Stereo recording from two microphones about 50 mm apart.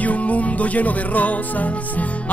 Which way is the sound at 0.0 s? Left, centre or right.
Left.